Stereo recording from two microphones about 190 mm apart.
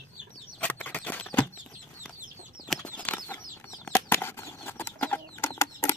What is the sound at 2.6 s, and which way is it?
Bird flight, 5° left (ahead or behind).